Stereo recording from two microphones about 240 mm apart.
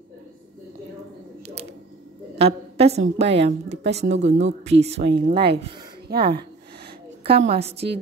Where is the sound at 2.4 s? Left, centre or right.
Right.